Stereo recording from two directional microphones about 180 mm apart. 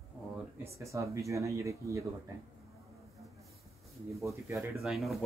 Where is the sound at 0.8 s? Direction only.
15° right (ahead or behind).